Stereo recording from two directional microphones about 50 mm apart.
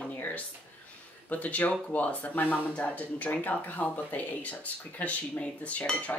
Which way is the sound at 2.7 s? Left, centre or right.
Left.